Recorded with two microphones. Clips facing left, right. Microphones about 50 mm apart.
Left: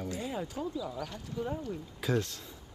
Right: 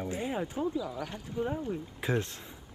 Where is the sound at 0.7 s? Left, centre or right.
Centre.